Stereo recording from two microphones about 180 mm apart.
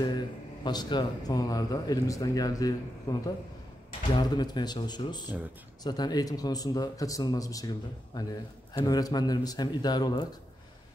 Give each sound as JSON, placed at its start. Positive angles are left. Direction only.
{"t": 0.7, "sound": "speech", "side_deg": 25}